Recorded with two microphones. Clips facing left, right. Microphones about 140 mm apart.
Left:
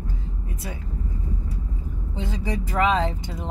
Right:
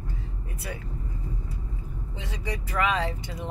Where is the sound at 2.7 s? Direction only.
30° left (ahead or behind).